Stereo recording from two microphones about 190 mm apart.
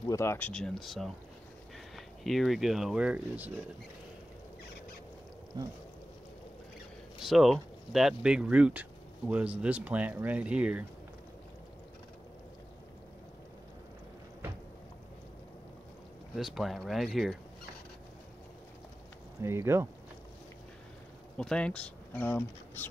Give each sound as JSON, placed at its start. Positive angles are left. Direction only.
{"t": 0.0, "sound": "speech", "side_deg": 15}
{"t": 5.5, "sound": "speech", "side_deg": -20}
{"t": 7.2, "sound": "speech", "side_deg": 0}
{"t": 16.3, "sound": "speech", "side_deg": 0}
{"t": 19.4, "sound": "speech", "side_deg": -15}
{"t": 21.4, "sound": "speech", "side_deg": 5}